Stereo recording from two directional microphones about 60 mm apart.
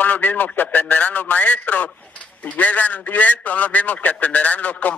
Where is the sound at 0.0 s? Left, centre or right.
Left.